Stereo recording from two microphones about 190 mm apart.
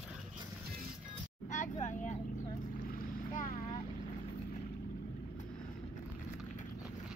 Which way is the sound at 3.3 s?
45° left (ahead or behind).